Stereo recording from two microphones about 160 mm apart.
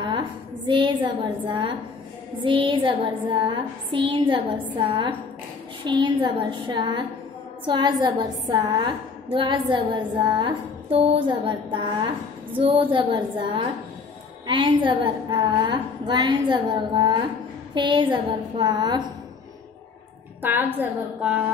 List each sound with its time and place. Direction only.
0.7 s a woman's voice: 30° right (ahead or behind)
2.4 s music: 35° right (ahead or behind)
5.9 s a woman's voice: 30° right (ahead or behind)
12.5 s music: 35° right (ahead or behind)
14.4 s a woman's voice: 30° right (ahead or behind)
20.4 s a woman's voice: 10° right (ahead or behind)